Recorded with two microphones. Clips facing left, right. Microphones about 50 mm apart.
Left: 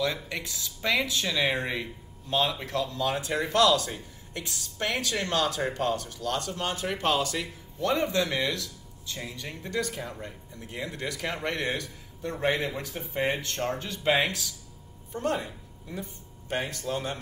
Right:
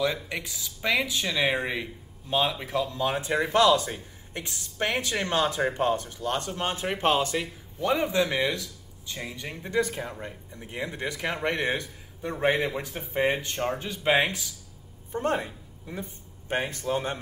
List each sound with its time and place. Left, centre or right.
0.0 s speech: centre; by 7.4 s right
7.8 s speech: centre